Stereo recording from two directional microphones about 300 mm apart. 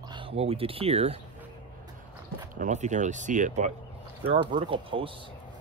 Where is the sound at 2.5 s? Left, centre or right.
Right.